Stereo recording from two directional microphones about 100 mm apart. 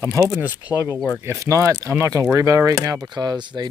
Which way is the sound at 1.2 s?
30° right (ahead or behind).